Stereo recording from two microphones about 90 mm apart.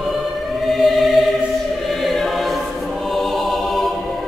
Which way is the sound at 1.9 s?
Centre (ahead or behind).